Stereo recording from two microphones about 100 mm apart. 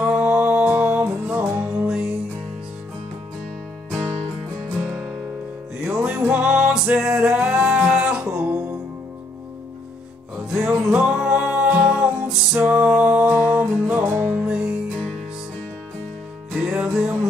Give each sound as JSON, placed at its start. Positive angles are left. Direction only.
{"t": 0.0, "sound": "music", "side_deg": -10}
{"t": 1.8, "sound": "music", "side_deg": -5}
{"t": 5.9, "sound": "music", "side_deg": -5}
{"t": 10.8, "sound": "music", "side_deg": -10}
{"t": 16.6, "sound": "music", "side_deg": -10}